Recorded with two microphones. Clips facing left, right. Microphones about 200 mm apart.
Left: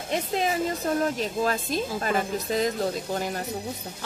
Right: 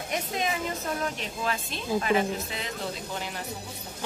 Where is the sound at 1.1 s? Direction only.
40° left (ahead or behind).